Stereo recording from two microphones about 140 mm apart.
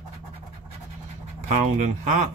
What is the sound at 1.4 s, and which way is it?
Speech, 55° right (ahead or behind).